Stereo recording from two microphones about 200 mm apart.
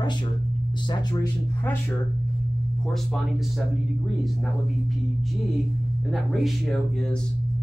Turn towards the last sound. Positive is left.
turn(degrees=0)  # may be behind; listen again after turning